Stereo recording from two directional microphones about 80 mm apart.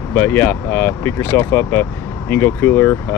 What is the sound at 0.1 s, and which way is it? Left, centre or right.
Speech, left.